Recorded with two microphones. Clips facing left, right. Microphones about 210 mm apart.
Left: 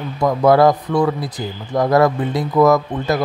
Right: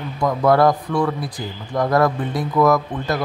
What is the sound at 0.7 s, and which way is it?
Speech, 20° left (ahead or behind).